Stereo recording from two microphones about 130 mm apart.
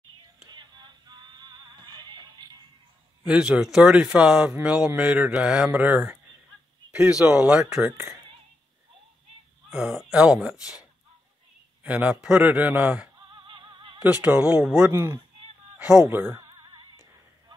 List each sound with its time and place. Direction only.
0.5 s music: 35° right (ahead or behind)
3.3 s a man's voice: 5° right (ahead or behind)
9.7 s speech: 5° right (ahead or behind)
10.6 s speech: 30° left (ahead or behind)
11.8 s speech: 10° right (ahead or behind)
13.3 s music: 40° right (ahead or behind)
13.9 s speech: 10° right (ahead or behind)
14.9 s speech: 20° right (ahead or behind)
15.8 s speech: 10° right (ahead or behind)
16.4 s music: 35° right (ahead or behind)